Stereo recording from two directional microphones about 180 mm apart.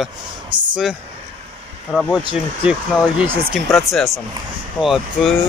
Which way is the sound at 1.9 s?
5° right (ahead or behind).